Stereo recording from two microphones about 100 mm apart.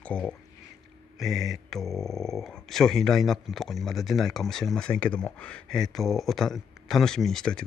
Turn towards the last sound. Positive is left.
turn(degrees=5)  # may be behind; listen again after turning